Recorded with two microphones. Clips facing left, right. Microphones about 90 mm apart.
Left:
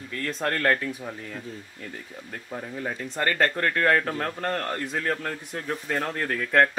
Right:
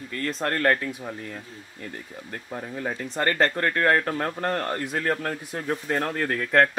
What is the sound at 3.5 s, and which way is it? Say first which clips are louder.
Speech: right 1 dB; 10° right (ahead or behind).